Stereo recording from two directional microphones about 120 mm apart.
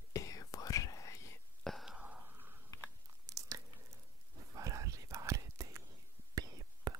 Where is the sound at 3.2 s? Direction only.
30° right (ahead or behind).